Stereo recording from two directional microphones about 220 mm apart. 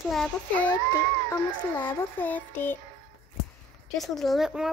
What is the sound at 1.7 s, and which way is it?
Child singing, 10° left (ahead or behind).